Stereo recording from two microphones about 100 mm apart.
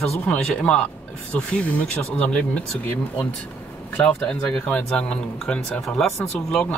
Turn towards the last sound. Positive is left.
turn(degrees=15)  # may be behind; listen again after turning